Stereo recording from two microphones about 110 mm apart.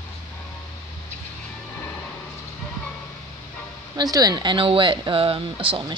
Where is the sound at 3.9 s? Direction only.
35° right (ahead or behind).